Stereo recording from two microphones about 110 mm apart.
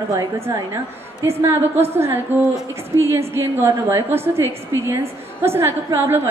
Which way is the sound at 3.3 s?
20° right (ahead or behind).